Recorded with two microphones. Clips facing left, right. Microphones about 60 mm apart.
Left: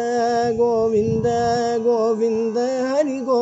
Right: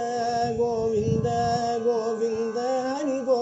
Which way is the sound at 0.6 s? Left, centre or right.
Left.